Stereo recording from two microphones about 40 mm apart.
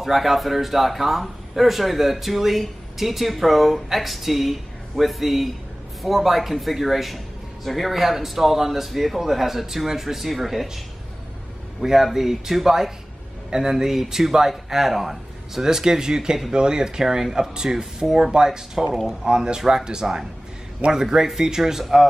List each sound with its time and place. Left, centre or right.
0.0 s speech: centre
11.8 s speech: centre